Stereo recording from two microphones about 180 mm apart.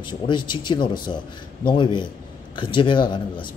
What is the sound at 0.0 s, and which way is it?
Speech, 25° left (ahead or behind).